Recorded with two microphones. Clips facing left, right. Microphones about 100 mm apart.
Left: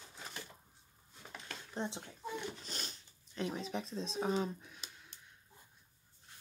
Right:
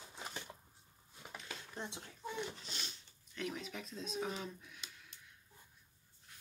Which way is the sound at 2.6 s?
45° left (ahead or behind).